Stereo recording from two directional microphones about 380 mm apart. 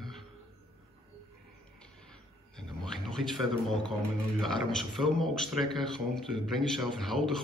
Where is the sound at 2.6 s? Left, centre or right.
Centre.